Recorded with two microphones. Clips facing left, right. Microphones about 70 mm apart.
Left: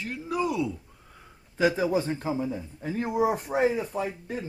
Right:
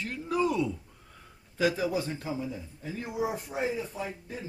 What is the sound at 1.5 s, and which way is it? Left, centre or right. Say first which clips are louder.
A man's voice: left 4 dB; left.